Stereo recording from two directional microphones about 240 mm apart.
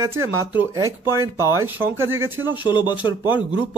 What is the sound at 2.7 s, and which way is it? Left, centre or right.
Speech, centre.